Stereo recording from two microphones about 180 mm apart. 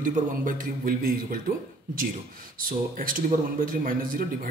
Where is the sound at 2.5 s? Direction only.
50° right (ahead or behind).